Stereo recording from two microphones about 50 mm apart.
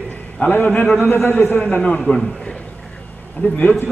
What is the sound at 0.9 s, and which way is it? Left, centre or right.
Speech, left.